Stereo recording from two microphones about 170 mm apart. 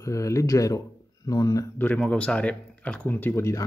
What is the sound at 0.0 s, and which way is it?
Speech, 20° left (ahead or behind).